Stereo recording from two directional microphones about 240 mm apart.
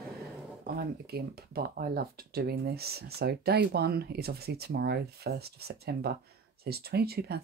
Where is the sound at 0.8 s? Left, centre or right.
Right.